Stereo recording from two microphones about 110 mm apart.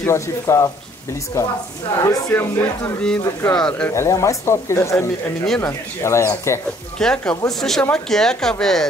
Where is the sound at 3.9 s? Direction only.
25° left (ahead or behind).